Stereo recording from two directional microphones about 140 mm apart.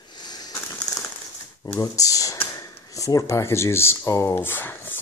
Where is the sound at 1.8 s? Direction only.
25° left (ahead or behind).